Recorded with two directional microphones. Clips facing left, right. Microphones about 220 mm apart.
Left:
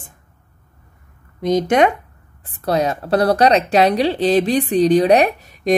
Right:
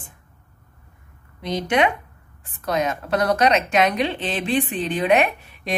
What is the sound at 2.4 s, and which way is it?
Speech, 35° left (ahead or behind).